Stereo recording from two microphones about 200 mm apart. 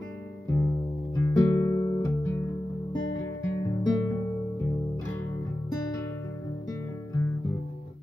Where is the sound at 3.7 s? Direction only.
20° left (ahead or behind).